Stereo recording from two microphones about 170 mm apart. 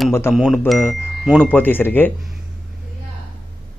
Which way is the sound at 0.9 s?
Centre (ahead or behind).